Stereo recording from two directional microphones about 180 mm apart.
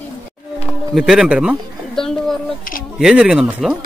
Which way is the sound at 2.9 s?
5° right (ahead or behind).